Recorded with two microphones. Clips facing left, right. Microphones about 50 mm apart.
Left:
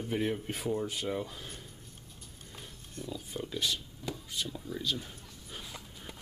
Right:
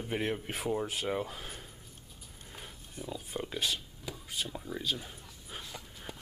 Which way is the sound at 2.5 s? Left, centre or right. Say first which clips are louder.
Right 1 dB; centre.